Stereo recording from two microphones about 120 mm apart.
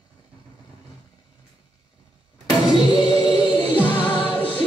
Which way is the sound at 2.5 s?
35° left (ahead or behind).